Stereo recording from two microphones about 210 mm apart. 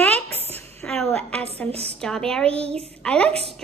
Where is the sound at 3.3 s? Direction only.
30° right (ahead or behind).